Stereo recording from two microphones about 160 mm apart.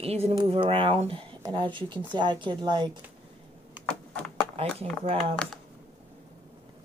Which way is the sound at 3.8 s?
10° left (ahead or behind).